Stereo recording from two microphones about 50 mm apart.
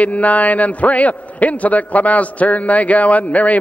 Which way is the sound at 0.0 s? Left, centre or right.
Left.